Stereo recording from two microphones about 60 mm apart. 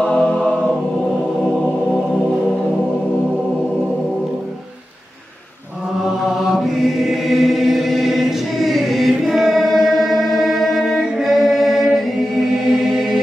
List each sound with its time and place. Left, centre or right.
0.0 s choir: centre
6.5 s choir: centre
11.0 s singing: centre
12.5 s music: centre